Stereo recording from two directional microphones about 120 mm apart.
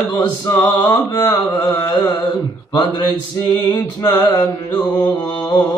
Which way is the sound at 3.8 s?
35° left (ahead or behind).